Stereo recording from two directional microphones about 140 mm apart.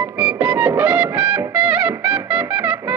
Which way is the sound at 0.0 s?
10° right (ahead or behind).